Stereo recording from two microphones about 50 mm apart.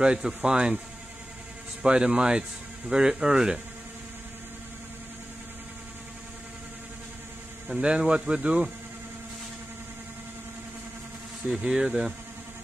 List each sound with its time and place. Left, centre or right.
0.0 s speech: centre
1.8 s speech: centre
7.7 s speech: centre
11.4 s speech: centre